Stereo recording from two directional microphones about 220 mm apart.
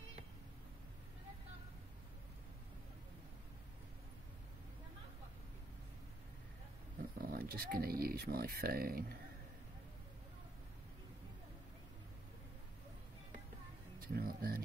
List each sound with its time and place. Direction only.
7.2 s speech: 45° right (ahead or behind)
14.0 s speech: 40° right (ahead or behind)